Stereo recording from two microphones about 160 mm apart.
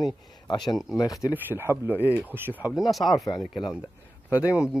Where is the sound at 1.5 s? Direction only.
15° right (ahead or behind); by 3.3 s centre (ahead or behind).